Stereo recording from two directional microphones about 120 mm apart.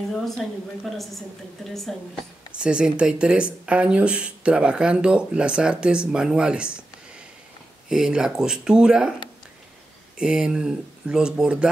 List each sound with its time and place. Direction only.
0.1 s a woman's voice: centre (ahead or behind)
2.5 s speech: 10° right (ahead or behind)
7.9 s a woman's voice: 5° right (ahead or behind)
10.1 s speech: 5° right (ahead or behind)